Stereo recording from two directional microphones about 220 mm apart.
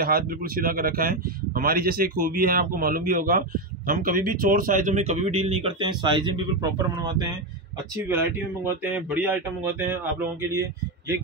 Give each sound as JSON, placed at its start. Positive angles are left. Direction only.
{"t": 0.0, "sound": "speech", "side_deg": -40}
{"t": 8.6, "sound": "speech", "side_deg": -10}